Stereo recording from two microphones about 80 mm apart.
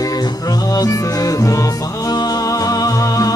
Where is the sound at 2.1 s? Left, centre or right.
Left.